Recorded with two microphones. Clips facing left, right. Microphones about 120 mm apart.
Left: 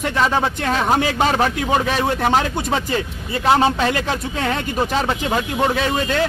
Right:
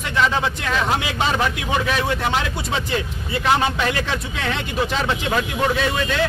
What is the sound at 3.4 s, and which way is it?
Speech, 35° left (ahead or behind).